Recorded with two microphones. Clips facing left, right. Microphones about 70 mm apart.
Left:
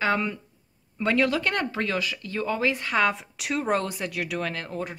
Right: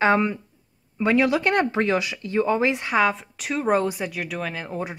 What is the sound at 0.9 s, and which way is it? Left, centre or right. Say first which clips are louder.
A woman's voice: right 3 dB; centre.